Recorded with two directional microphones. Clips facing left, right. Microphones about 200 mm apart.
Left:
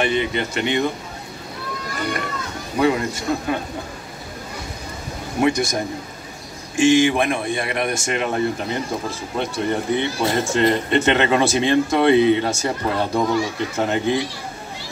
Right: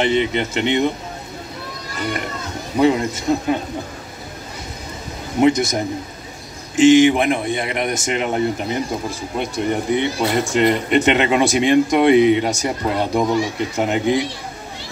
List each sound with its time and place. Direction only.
0.0 s a man's voice: 20° right (ahead or behind)
2.8 s a man's voice: 20° right (ahead or behind)
5.4 s a man's voice: 20° right (ahead or behind)